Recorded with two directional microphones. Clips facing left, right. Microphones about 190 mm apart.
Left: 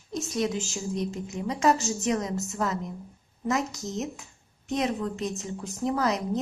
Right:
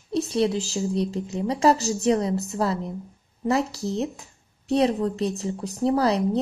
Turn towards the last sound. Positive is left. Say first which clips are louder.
# right 5 dB
turn(degrees=-35)  # may be behind; listen again after turning